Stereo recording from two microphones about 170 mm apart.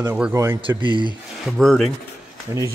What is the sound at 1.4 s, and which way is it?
Speech, centre (ahead or behind).